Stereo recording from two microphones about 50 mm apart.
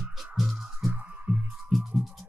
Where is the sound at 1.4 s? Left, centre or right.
Centre.